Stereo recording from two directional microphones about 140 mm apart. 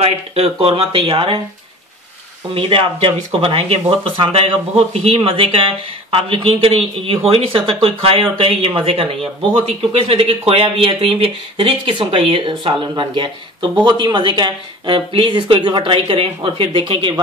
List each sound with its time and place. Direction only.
0.0 s speech: 45° right (ahead or behind)
2.5 s speech: 40° right (ahead or behind)